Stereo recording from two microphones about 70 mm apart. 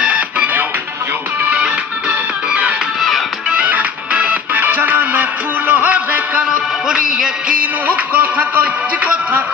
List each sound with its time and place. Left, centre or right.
0.0 s music: centre
6.9 s music: centre
7.8 s a man's voice: right